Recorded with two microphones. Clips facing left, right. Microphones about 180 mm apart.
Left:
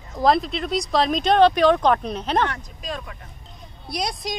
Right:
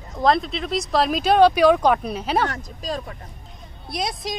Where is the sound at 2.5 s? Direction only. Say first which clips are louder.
Right 3 dB; 40° right (ahead or behind).